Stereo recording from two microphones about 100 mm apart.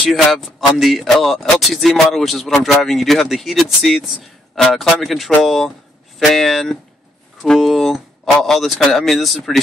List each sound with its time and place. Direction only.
0.1 s speech: centre (ahead or behind)